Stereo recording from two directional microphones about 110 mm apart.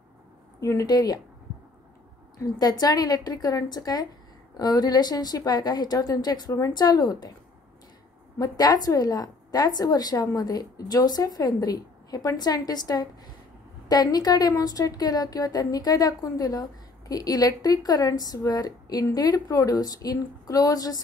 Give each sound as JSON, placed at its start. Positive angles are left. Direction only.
{"t": 0.6, "sound": "a woman's voice", "side_deg": 30}
{"t": 2.3, "sound": "a woman's voice", "side_deg": 35}
{"t": 8.4, "sound": "a woman's voice", "side_deg": 35}